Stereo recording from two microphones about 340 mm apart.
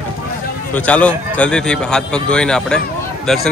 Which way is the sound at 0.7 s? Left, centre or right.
Centre.